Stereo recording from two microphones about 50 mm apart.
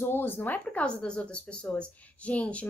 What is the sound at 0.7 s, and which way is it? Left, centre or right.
A woman's voice, left.